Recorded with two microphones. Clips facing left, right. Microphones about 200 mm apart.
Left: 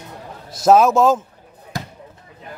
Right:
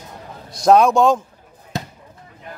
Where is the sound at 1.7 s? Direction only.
25° right (ahead or behind).